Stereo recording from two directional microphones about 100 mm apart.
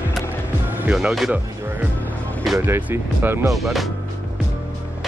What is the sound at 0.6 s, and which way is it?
Music, 20° right (ahead or behind).